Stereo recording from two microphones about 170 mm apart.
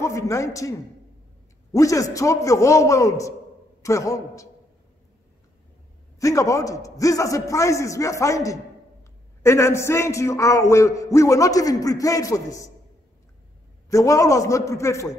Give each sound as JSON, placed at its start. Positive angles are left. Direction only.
{"t": 0.0, "sound": "a man's voice", "side_deg": 20}
{"t": 6.1, "sound": "a man's voice", "side_deg": 20}
{"t": 13.8, "sound": "a man's voice", "side_deg": 20}